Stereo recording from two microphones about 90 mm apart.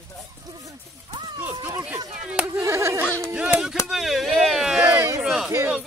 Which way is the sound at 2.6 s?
30° right (ahead or behind).